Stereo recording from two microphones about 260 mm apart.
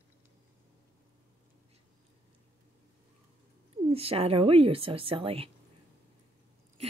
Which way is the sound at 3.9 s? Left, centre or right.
Right.